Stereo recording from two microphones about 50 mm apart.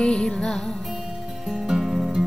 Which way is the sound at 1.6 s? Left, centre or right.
Centre.